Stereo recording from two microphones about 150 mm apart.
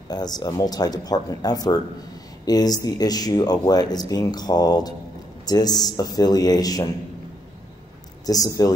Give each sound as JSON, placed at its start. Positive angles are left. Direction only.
{"t": 0.1, "sound": "speech", "side_deg": 25}
{"t": 8.3, "sound": "speech", "side_deg": 25}